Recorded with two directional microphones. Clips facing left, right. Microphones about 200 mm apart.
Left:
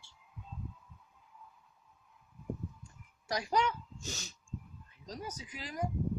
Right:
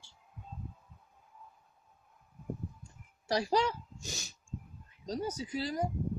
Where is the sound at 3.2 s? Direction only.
30° right (ahead or behind).